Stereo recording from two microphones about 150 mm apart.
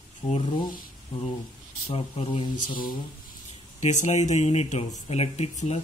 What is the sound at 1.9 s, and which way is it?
Speech, 40° left (ahead or behind).